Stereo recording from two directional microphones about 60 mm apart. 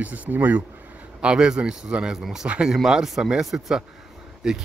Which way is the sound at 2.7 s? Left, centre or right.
Centre.